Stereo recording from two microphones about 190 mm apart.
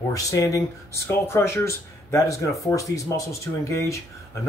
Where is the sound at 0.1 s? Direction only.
15° left (ahead or behind).